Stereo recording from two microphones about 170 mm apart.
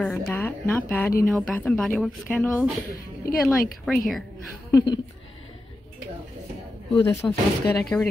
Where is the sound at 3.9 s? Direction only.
Centre (ahead or behind).